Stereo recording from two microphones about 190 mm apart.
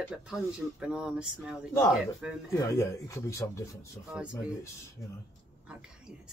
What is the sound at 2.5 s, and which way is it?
Speech, 15° left (ahead or behind).